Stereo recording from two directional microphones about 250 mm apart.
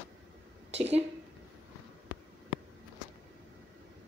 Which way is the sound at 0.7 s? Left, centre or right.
Right.